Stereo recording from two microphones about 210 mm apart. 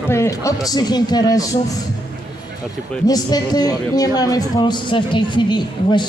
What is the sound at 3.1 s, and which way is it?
A man's voice, 20° left (ahead or behind).